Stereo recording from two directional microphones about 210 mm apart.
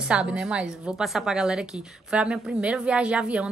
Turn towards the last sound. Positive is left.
turn(degrees=-5)  # may be behind; listen again after turning